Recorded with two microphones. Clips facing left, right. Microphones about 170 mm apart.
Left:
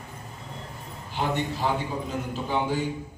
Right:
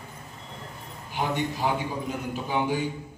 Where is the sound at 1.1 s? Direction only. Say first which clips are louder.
Even; 15° right (ahead or behind).